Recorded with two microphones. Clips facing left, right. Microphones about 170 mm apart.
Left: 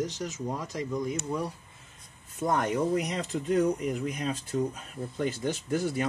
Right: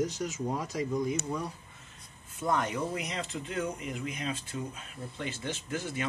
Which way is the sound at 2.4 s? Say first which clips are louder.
Left 3 dB; 45° left (ahead or behind).